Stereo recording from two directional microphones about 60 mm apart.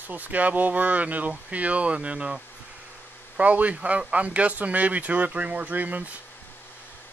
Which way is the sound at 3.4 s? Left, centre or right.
Right.